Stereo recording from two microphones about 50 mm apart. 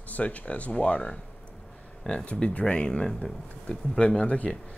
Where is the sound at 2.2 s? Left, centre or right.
Left.